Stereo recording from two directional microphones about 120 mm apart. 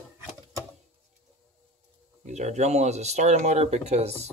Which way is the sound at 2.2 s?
75° right (ahead or behind).